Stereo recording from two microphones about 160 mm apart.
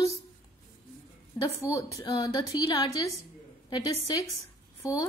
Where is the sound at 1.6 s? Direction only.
20° left (ahead or behind).